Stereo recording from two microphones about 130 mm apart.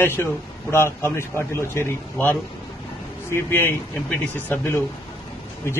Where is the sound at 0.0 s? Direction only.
20° left (ahead or behind).